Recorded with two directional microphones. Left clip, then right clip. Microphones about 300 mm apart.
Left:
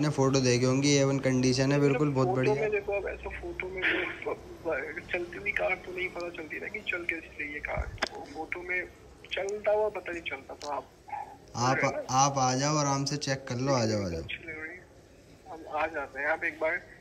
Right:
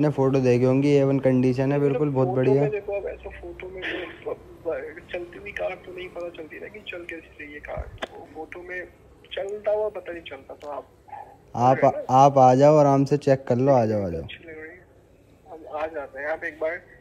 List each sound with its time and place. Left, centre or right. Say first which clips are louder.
0.0 s speech: right 6 dB; centre